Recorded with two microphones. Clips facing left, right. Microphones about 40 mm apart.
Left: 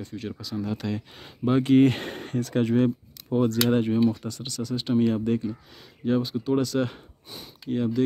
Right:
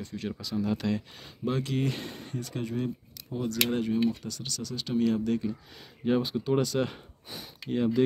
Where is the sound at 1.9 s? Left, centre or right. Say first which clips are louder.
Left 7 dB; left.